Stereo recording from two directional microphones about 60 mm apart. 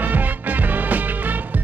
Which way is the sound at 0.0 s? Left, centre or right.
Right.